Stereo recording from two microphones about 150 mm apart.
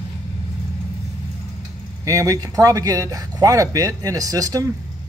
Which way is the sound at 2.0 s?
20° right (ahead or behind).